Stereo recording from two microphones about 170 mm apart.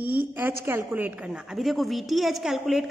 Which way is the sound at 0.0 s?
60° right (ahead or behind).